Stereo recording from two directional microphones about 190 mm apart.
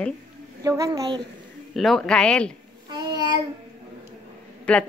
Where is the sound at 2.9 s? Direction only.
20° right (ahead or behind).